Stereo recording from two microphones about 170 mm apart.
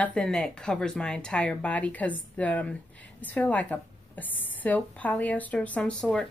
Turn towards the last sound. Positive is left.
turn(degrees=5)  # may be behind; listen again after turning